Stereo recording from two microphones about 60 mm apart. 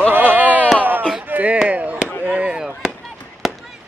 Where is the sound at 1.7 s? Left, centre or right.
Right.